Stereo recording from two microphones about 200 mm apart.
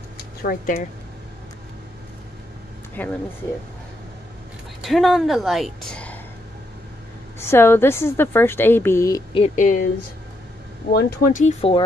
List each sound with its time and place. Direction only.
0.4 s speech: 50° left (ahead or behind)
2.9 s speech: 10° left (ahead or behind)
4.8 s a woman's voice: centre (ahead or behind)
7.3 s a woman's voice: 10° left (ahead or behind)
9.3 s speech: 35° left (ahead or behind)
10.9 s speech: 50° left (ahead or behind); by 11.8 s 30° left (ahead or behind)